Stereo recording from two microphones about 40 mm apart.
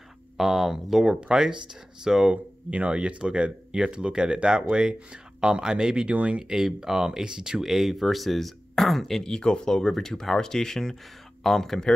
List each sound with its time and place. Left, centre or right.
0.4 s speech: centre
1.2 s speech: right
2.3 s speech: right
6.1 s speech: right
6.4 s speech: centre
7.6 s speech: centre
9.2 s speech: centre